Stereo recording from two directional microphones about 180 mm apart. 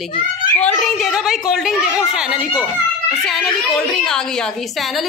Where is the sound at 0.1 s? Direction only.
50° left (ahead or behind).